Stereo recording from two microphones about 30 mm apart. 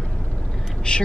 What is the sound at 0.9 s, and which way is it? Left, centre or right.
Speech, left.